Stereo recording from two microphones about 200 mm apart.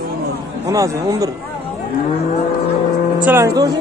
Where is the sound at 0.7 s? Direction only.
15° right (ahead or behind).